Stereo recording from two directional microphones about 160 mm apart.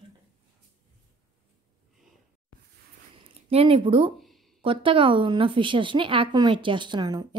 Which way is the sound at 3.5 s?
35° right (ahead or behind).